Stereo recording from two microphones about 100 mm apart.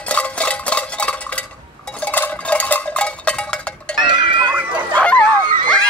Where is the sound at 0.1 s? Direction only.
15° left (ahead or behind).